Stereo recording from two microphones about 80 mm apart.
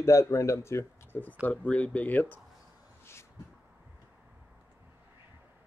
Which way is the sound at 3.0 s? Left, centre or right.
Left.